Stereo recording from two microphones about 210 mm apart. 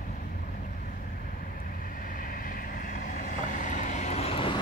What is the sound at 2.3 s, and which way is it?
Vehicle, 40° left (ahead or behind).